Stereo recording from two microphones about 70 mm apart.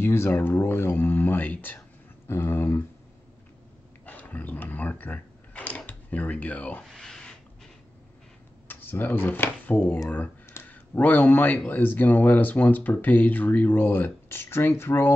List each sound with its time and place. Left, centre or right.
0.0 s speech: left
2.2 s speech: left
4.0 s a sound: left
5.9 s speech: left
6.9 s a sound: centre
8.6 s speech: left